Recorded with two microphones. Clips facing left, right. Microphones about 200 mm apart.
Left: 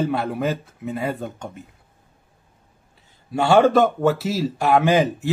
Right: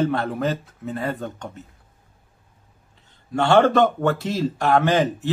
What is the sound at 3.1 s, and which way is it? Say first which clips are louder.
A man's voice: left 1 dB; 10° left (ahead or behind).